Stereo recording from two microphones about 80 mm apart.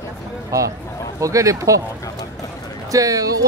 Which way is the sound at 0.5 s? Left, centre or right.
Right.